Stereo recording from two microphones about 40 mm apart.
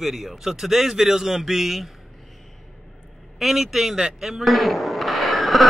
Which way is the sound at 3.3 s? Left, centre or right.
Centre.